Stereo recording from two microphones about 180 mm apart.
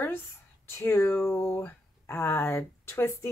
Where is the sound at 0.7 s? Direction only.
15° left (ahead or behind).